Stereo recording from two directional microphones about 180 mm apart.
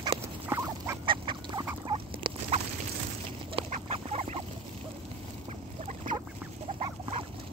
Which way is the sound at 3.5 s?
35° right (ahead or behind).